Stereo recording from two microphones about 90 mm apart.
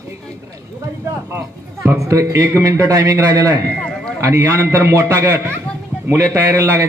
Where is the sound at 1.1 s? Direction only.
30° right (ahead or behind).